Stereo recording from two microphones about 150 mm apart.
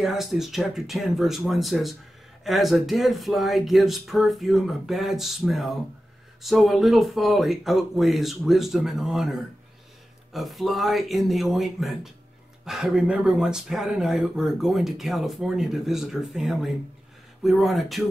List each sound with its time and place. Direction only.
0.0 s speech: centre (ahead or behind)